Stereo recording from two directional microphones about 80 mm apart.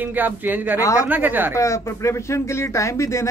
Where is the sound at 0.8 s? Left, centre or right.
Left.